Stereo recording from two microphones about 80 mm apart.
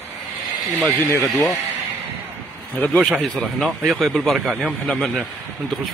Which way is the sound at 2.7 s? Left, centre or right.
Left.